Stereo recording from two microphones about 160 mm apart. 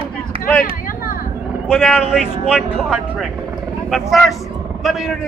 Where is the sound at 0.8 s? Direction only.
65° left (ahead or behind).